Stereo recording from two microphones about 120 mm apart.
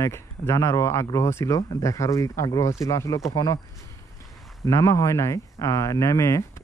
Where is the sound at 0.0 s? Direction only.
25° left (ahead or behind).